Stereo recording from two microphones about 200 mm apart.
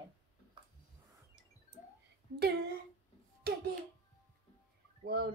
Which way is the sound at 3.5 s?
50° right (ahead or behind).